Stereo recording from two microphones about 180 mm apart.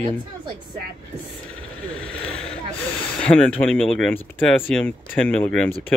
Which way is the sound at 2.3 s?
5° left (ahead or behind).